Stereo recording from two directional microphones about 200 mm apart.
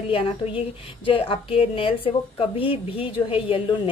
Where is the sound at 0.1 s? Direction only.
25° left (ahead or behind).